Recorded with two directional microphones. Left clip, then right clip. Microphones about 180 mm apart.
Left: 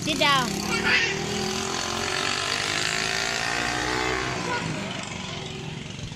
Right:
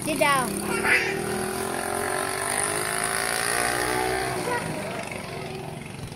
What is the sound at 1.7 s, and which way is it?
Vehicle, 45° right (ahead or behind).